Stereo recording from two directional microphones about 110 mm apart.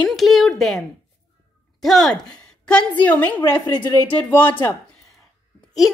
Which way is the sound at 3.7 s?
40° left (ahead or behind).